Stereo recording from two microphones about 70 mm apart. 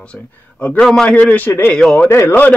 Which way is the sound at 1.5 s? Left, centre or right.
Left.